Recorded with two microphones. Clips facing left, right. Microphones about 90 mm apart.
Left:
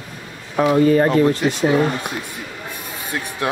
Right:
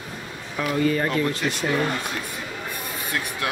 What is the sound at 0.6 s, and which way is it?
Speech, 35° left (ahead or behind).